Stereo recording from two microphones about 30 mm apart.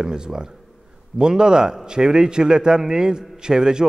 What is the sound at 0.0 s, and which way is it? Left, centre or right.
A man's voice, right.